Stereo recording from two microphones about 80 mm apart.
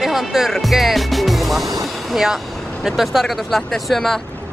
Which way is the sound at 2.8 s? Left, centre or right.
Centre.